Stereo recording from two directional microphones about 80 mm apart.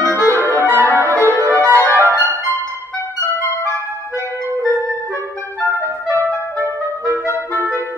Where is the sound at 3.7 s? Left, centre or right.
Right.